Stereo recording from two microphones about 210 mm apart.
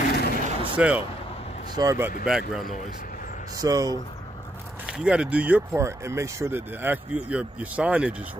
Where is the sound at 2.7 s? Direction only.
40° left (ahead or behind).